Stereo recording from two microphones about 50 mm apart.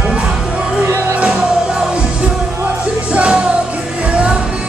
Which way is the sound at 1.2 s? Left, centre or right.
Right.